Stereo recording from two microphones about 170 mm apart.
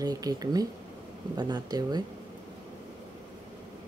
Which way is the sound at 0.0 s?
20° right (ahead or behind).